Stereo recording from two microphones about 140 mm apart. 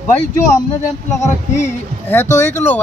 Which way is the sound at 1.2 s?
15° left (ahead or behind).